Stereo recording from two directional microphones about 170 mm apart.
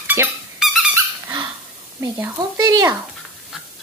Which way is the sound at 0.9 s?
25° right (ahead or behind).